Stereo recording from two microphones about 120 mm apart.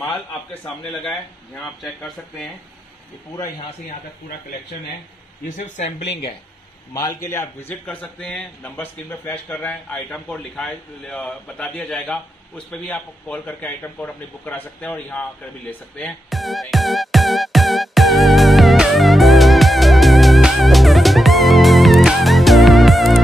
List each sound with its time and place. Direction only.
5.6 s speech: 90° left
6.9 s a man's voice: 30° left (ahead or behind); by 15.2 s 15° left (ahead or behind)
16.0 s music: 5° left (ahead or behind)